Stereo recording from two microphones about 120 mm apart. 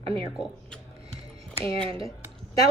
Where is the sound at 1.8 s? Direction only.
50° right (ahead or behind).